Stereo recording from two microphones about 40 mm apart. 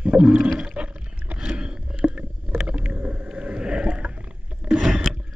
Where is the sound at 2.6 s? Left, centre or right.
Right.